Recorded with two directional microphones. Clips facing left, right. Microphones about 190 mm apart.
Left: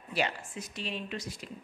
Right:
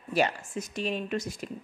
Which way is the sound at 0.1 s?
45° right (ahead or behind).